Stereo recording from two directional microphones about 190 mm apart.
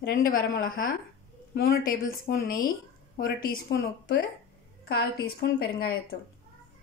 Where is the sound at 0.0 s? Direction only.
50° left (ahead or behind).